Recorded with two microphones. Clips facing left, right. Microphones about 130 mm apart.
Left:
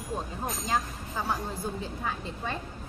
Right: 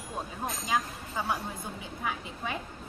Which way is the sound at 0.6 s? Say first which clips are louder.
Even; 10° right (ahead or behind).